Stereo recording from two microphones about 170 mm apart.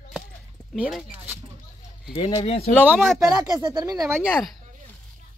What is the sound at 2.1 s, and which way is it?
Speech, 25° left (ahead or behind).